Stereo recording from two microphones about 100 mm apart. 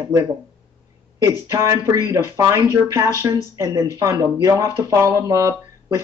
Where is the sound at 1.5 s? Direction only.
30° right (ahead or behind).